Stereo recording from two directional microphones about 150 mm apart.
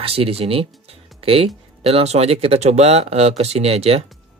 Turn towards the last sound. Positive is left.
turn(degrees=-40)  # may be behind; listen again after turning